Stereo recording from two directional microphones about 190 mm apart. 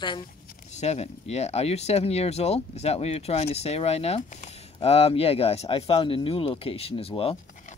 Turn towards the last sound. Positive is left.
turn(degrees=30)  # may be behind; listen again after turning